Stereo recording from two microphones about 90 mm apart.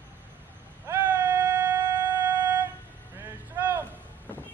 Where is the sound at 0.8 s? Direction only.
20° right (ahead or behind).